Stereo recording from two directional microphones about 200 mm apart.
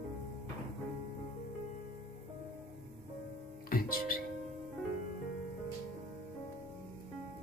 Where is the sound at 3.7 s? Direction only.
45° left (ahead or behind).